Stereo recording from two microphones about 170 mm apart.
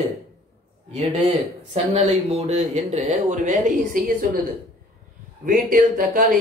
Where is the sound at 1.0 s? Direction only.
40° right (ahead or behind).